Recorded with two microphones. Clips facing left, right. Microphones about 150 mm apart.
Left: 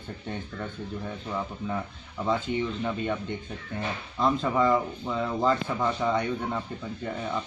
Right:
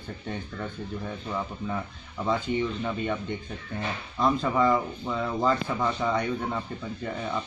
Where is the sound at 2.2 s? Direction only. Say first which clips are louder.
Right 1 dB; centre (ahead or behind).